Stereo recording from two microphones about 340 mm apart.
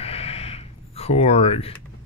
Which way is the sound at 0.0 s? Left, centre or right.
Centre.